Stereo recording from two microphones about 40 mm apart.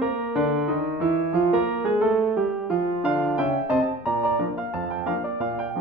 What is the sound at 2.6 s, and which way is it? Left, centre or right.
Music, right.